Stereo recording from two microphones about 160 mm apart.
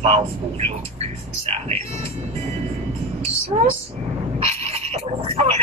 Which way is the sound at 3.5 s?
35° right (ahead or behind).